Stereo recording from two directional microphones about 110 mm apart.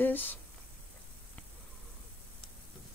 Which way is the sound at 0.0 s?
15° left (ahead or behind).